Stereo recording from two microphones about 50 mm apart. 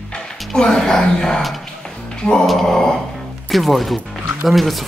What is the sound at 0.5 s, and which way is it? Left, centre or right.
Speech, centre.